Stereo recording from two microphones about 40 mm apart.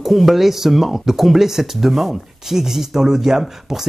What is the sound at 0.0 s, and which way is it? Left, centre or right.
Speech, centre.